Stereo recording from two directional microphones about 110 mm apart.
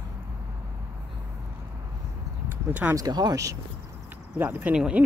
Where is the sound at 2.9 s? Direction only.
35° right (ahead or behind).